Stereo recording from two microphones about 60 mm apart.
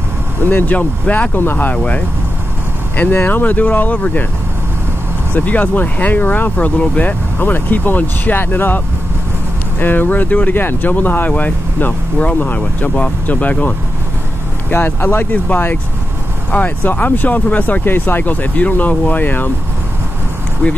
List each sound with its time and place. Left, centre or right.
0.5 s speech: left
1.8 s speech: left
3.2 s speech: left
5.3 s speech: left
20.6 s speech: left